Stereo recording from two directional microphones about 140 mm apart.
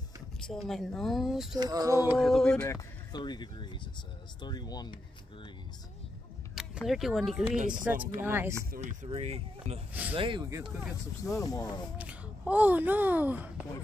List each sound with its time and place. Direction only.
0.4 s a woman's voice: 5° left (ahead or behind)
1.6 s a sound: 25° right (ahead or behind)
2.1 s a woman's voice: centre (ahead or behind)
2.7 s speech: 30° left (ahead or behind)
6.5 s a sound: 5° right (ahead or behind)
6.8 s a woman's voice: centre (ahead or behind)
8.8 s speech: 50° right (ahead or behind)
10.1 s speech: 40° right (ahead or behind)
11.3 s speech: 25° left (ahead or behind)
12.0 s a child's voice: 10° right (ahead or behind)